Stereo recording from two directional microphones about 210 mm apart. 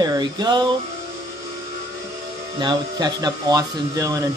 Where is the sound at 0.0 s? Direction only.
20° right (ahead or behind).